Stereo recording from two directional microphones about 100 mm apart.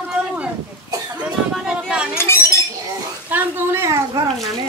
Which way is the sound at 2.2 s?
25° left (ahead or behind).